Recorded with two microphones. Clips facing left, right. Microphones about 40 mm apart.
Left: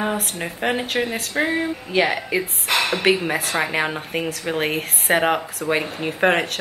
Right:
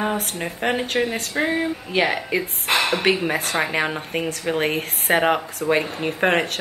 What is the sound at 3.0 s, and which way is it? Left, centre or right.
A woman's voice, centre.